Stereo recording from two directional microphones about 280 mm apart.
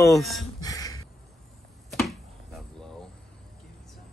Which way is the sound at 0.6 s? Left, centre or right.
Centre.